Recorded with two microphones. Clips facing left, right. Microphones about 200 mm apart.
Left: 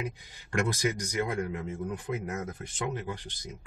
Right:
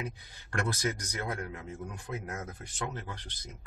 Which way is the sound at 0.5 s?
15° left (ahead or behind).